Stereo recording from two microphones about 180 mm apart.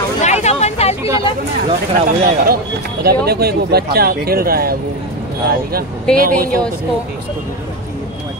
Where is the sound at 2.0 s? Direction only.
55° right (ahead or behind).